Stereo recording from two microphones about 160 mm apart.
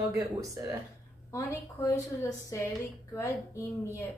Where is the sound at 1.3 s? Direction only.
20° left (ahead or behind).